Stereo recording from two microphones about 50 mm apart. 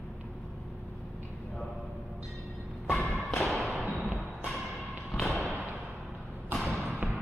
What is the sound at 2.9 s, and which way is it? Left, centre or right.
Thump, left.